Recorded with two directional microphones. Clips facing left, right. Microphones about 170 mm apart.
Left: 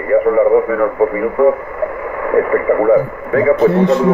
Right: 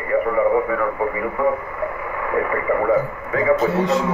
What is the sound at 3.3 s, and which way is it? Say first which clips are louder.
Speech: left 7 dB; 55° left (ahead or behind).